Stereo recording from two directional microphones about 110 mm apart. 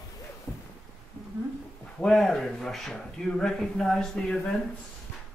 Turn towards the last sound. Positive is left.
turn(degrees=5)  # may be behind; listen again after turning